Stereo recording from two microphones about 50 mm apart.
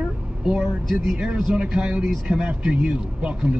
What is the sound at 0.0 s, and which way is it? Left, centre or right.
Vehicle, centre.